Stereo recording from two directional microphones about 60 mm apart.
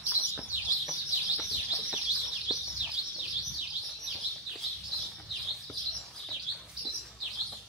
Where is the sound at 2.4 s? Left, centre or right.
Centre.